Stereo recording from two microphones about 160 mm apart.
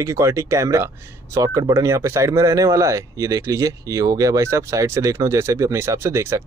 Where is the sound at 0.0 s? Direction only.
20° right (ahead or behind).